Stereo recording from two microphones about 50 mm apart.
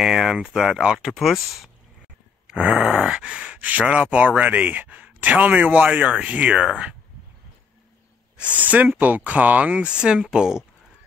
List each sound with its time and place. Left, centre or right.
0.0 s groan: centre
0.6 s speech: centre
2.5 s groan: right
2.8 s groan: centre
3.5 s speech: right
8.4 s speech: right; by 10.6 s centre